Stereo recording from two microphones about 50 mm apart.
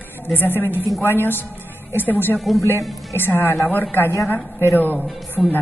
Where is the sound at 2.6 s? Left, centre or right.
Left.